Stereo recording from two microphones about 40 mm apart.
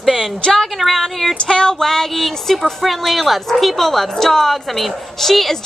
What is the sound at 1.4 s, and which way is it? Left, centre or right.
A woman's voice, left.